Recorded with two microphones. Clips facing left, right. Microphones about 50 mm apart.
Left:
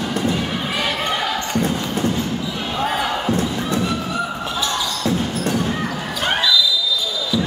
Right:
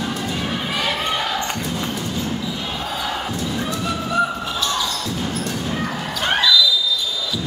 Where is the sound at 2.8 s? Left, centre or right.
Left.